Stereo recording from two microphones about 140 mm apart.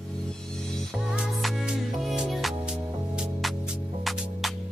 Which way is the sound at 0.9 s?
5° right (ahead or behind).